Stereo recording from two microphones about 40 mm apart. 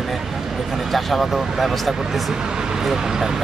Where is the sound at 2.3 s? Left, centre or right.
Centre.